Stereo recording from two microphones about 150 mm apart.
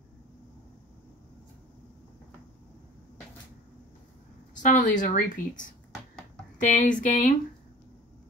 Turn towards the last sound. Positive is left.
turn(degrees=60)  # may be behind; listen again after turning